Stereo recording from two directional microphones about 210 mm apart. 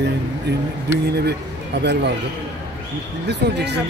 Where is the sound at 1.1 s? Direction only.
50° right (ahead or behind).